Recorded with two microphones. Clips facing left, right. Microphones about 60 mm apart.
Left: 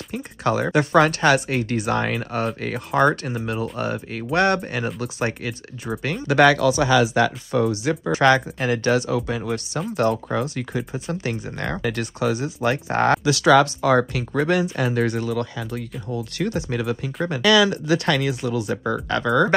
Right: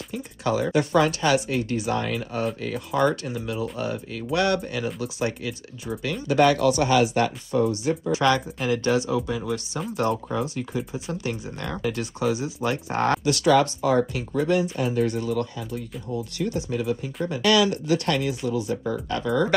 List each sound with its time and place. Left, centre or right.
0.1 s speech: left
6.2 s speech: left
8.1 s speech: left
17.8 s speech: left